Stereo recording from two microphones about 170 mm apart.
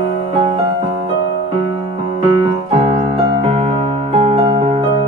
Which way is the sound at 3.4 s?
35° right (ahead or behind).